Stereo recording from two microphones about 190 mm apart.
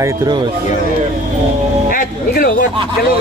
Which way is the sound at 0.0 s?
25° right (ahead or behind).